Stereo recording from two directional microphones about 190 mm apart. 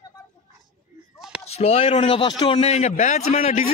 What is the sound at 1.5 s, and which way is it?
A man's voice, 35° left (ahead or behind).